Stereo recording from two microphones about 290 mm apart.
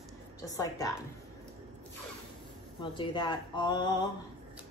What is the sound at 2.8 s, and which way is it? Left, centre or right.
Speech, centre.